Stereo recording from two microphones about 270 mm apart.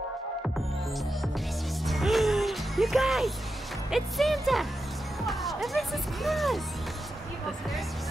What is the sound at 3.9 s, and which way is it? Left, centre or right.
Speech, centre.